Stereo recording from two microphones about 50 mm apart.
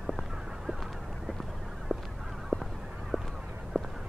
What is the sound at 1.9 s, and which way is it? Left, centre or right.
Goose, centre.